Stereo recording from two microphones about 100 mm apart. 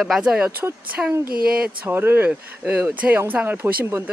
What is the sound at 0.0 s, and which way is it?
Speech, 5° right (ahead or behind).